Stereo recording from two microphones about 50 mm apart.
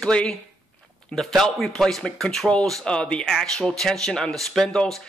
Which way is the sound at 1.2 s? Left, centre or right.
Centre.